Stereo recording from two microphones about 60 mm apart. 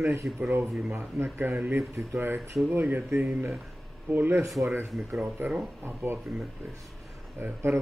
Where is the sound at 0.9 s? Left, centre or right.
Right.